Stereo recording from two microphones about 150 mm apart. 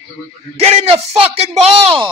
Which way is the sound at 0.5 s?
45° right (ahead or behind).